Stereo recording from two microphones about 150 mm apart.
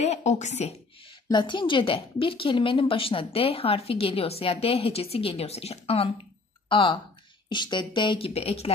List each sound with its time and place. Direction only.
0.0 s a woman's voice: 50° left (ahead or behind)
1.3 s a woman's voice: 30° left (ahead or behind)